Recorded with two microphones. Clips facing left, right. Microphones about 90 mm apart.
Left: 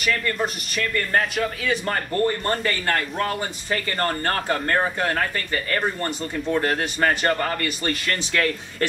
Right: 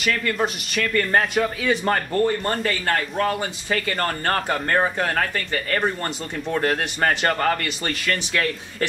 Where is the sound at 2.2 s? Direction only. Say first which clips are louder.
Right 1 dB; 15° right (ahead or behind).